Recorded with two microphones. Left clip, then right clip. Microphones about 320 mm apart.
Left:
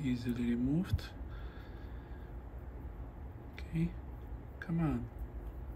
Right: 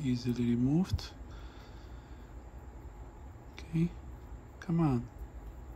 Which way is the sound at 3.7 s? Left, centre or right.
Centre.